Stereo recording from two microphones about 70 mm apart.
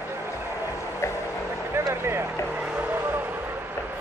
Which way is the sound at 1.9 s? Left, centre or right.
Right.